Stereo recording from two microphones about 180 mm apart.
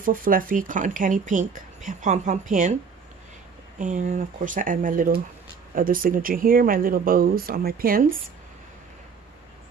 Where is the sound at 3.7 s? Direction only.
45° right (ahead or behind).